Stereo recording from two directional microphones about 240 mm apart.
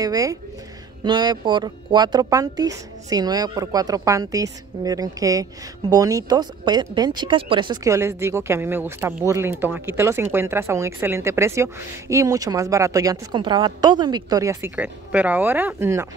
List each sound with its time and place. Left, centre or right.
0.0 s speech: centre